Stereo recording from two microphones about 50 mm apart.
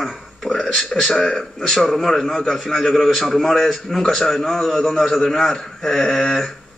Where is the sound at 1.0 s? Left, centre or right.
Centre.